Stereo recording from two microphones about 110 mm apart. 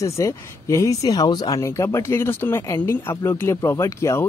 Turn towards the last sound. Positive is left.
turn(degrees=25)  # may be behind; listen again after turning